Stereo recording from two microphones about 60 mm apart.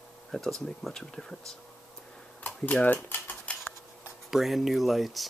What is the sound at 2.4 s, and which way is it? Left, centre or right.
Speech, left.